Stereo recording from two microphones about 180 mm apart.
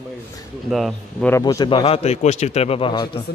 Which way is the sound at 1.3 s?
20° left (ahead or behind).